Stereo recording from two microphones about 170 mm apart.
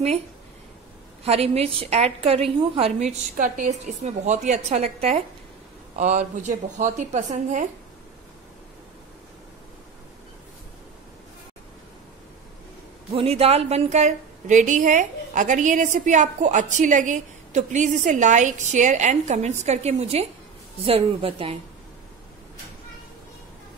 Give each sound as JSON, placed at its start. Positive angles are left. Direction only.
{"t": 1.2, "sound": "a woman's voice", "side_deg": -35}
{"t": 13.1, "sound": "a woman's voice", "side_deg": -35}